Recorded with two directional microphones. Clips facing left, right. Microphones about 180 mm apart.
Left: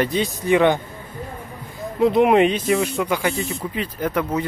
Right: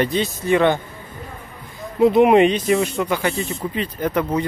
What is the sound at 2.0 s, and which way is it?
Speech, centre (ahead or behind).